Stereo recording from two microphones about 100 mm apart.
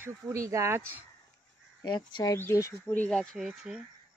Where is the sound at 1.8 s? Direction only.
50° left (ahead or behind).